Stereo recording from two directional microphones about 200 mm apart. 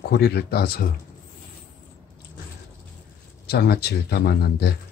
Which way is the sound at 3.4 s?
50° left (ahead or behind).